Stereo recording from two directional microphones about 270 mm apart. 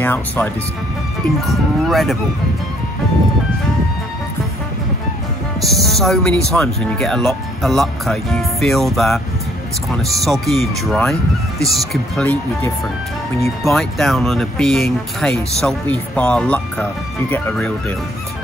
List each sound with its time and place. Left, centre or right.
0.0 s speech: centre
5.6 s speech: centre